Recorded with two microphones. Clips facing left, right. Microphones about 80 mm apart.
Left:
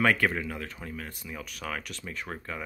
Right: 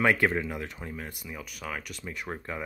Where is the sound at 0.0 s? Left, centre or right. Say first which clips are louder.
Right 1 dB; right.